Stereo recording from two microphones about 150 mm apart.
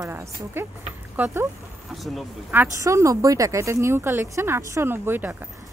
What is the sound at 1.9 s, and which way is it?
Speech, centre (ahead or behind).